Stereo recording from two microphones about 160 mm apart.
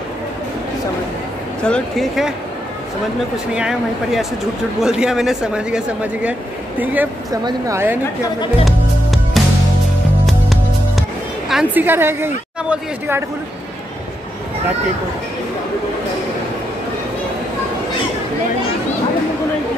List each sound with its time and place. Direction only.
1.6 s speech: 5° left (ahead or behind)
3.5 s speech: 5° right (ahead or behind)
8.6 s music: centre (ahead or behind)
11.8 s speech: 15° right (ahead or behind)